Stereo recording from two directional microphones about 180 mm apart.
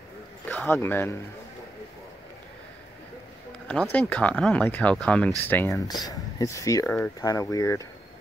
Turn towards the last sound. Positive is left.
turn(degrees=15)  # may be behind; listen again after turning